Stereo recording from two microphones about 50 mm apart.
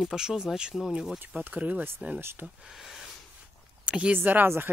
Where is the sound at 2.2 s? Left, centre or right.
Right.